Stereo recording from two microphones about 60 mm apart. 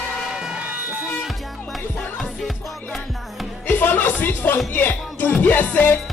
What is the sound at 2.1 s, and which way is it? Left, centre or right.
Music, centre.